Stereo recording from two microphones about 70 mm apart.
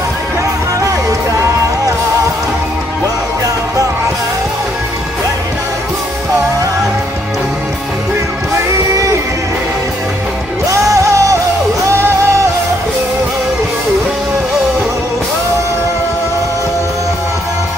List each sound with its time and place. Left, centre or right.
8.9 s music: right
10.8 s music: right